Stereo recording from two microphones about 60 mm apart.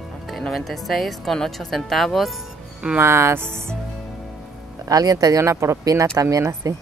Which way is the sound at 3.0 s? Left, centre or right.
Right.